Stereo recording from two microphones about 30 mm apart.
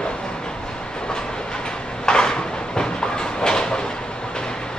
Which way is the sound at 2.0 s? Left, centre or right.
Left.